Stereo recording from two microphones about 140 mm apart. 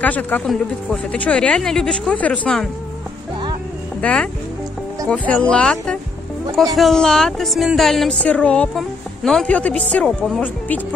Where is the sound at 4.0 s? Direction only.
10° left (ahead or behind).